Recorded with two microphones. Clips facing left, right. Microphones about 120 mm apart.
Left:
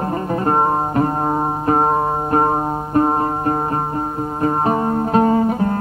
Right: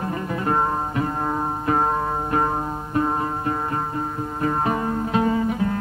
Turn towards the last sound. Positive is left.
turn(degrees=40)  # may be behind; listen again after turning